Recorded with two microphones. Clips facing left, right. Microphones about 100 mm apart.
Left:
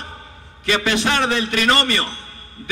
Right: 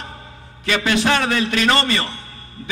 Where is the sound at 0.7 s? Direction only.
25° left (ahead or behind).